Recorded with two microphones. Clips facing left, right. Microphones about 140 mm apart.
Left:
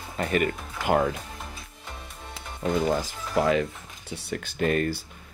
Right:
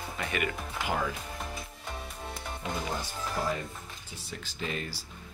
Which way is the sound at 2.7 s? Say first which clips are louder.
Left 12 dB; 90° left.